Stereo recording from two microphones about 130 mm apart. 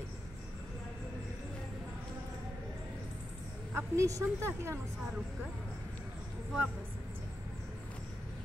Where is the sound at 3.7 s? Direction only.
25° right (ahead or behind).